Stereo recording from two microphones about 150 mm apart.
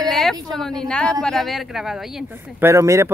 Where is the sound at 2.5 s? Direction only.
20° right (ahead or behind).